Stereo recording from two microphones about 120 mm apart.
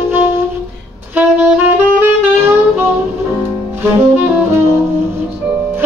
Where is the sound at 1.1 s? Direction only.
15° right (ahead or behind).